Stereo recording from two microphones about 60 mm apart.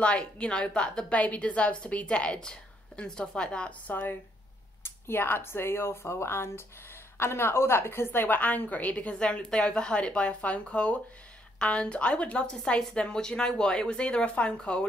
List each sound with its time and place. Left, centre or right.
0.0 s a woman's voice: centre
3.9 s a woman's voice: left
9.2 s a woman's voice: centre